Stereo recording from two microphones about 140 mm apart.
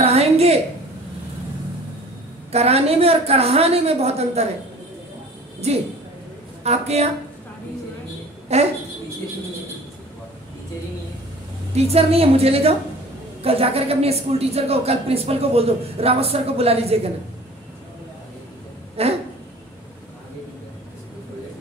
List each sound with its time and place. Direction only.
0.0 s a sound: 45° right (ahead or behind)
2.5 s a woman's voice: 50° right (ahead or behind)
5.6 s a woman's voice: 50° right (ahead or behind)
8.5 s a woman's voice: 50° right (ahead or behind)
11.7 s a woman's voice: 50° right (ahead or behind)
19.0 s a woman's voice: 45° right (ahead or behind)